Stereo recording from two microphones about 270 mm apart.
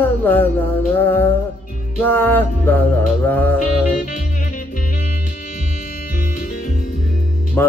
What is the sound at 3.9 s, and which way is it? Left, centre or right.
Music, left.